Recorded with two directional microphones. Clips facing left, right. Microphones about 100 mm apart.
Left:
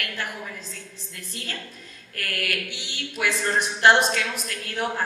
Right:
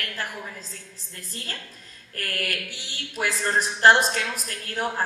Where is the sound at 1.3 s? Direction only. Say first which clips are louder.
Left 2 dB; 35° right (ahead or behind).